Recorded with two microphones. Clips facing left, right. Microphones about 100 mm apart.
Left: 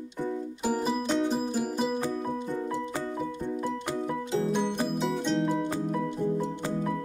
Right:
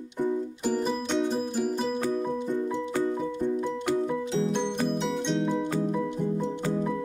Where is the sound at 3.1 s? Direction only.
5° left (ahead or behind).